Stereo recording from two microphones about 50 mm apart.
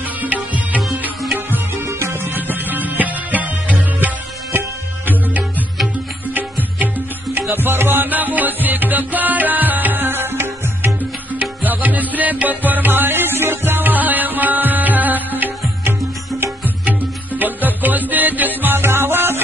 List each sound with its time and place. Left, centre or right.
0.2 s music: right
1.9 s music: right
4.5 s music: right
7.3 s music: right
11.3 s music: right
18.6 s music: right